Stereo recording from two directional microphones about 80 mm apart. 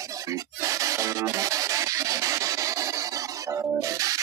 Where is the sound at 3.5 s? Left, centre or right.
Right.